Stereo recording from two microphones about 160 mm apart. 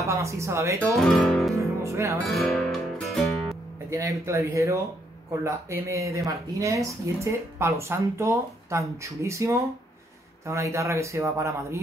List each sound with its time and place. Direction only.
0.0 s speech: 20° right (ahead or behind)
0.9 s speech: centre (ahead or behind)
1.8 s speech: 20° right (ahead or behind)
2.1 s music: centre (ahead or behind)
3.9 s speech: 20° right (ahead or behind)